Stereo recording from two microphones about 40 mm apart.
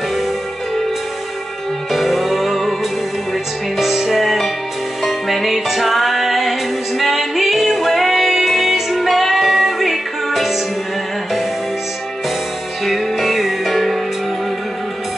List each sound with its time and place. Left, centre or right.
1.9 s music: centre
3.7 s music: centre
12.8 s music: centre